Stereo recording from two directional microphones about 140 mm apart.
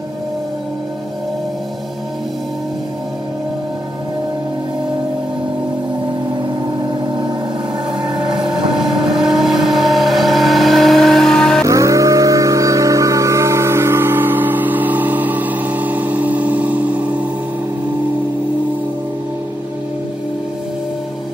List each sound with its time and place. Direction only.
6.9 s a sound: 35° right (ahead or behind)
8.0 s vehicle: 35° right (ahead or behind)
8.3 s vehicle: 5° right (ahead or behind)
11.6 s music: 25° right (ahead or behind)